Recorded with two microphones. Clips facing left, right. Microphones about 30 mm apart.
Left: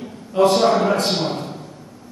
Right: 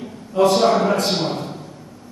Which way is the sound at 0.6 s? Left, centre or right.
Centre.